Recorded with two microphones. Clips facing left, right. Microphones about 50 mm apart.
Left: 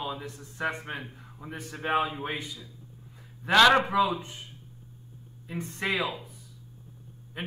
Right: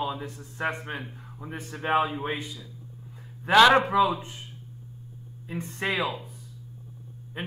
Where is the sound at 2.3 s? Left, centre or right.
Right.